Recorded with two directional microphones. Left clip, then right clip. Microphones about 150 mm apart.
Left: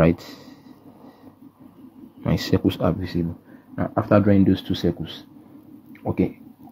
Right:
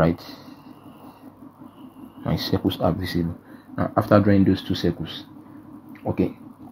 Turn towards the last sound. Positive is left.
turn(degrees=40)  # may be behind; listen again after turning